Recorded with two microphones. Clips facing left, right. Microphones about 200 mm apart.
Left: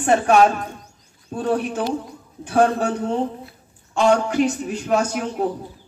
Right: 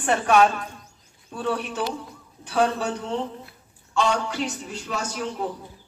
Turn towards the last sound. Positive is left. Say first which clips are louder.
# left 7 dB
turn(degrees=50)  # may be behind; listen again after turning